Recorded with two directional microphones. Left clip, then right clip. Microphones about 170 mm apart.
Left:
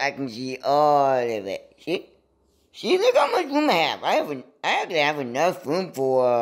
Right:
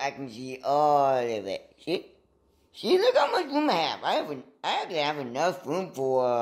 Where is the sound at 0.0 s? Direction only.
40° left (ahead or behind).